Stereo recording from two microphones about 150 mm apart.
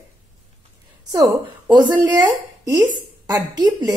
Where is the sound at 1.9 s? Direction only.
20° right (ahead or behind).